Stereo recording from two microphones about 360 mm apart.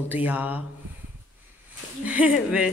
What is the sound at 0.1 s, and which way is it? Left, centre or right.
Speech, centre.